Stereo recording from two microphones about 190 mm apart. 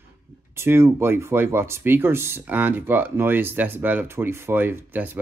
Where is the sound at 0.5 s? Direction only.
10° right (ahead or behind).